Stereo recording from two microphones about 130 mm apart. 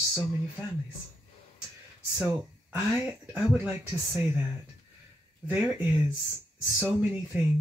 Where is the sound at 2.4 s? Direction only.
10° right (ahead or behind).